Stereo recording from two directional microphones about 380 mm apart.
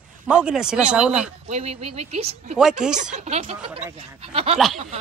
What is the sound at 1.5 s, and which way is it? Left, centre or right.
Speech, centre.